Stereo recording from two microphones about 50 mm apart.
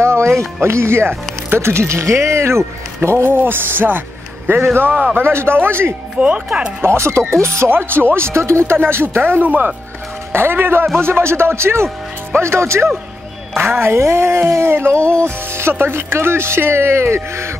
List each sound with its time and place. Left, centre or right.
0.0 s music: right
0.6 s speech: right
3.3 s speech: right
6.1 s speech: right
6.8 s speech: right
7.7 s speech: right
8.7 s speech: right
9.4 s speech: right
10.3 s speech: right
13.6 s speech: right